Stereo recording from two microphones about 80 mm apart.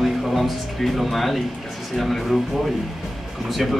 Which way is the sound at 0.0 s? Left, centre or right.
Centre.